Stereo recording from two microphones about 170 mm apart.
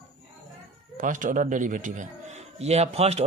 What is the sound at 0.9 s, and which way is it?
Speech, 50° right (ahead or behind).